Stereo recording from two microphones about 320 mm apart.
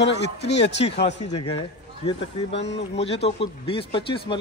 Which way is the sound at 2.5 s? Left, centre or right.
Left.